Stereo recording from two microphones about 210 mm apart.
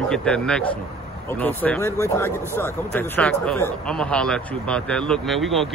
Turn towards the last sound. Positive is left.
turn(degrees=0)  # may be behind; listen again after turning